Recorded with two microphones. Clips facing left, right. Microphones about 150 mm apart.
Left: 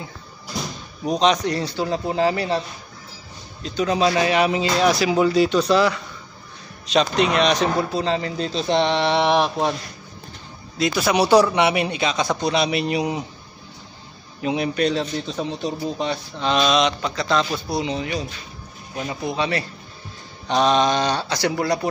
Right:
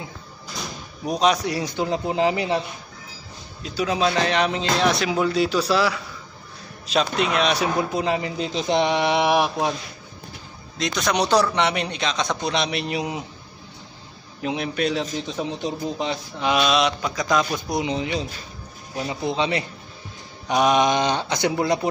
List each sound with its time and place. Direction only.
1.0 s speech: 5° right (ahead or behind)
3.6 s speech: 5° right (ahead or behind)
10.8 s speech: 5° left (ahead or behind)
14.4 s speech: centre (ahead or behind)
15.2 s speech: 15° right (ahead or behind)
19.2 s speech: 20° right (ahead or behind)